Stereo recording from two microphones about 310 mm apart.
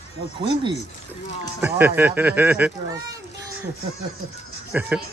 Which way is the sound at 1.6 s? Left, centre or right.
Centre.